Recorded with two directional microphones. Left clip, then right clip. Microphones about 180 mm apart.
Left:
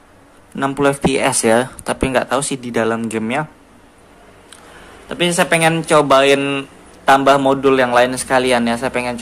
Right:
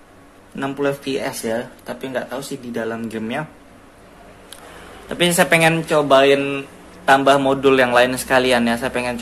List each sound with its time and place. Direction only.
0.6 s speech: 25° left (ahead or behind)
5.0 s a man's voice: 10° left (ahead or behind)